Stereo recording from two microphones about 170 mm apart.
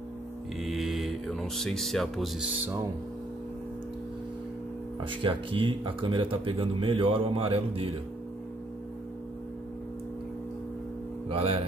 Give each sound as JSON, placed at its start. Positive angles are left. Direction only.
{"t": 0.6, "sound": "speech", "side_deg": 0}
{"t": 5.0, "sound": "speech", "side_deg": -30}
{"t": 11.2, "sound": "speech", "side_deg": -35}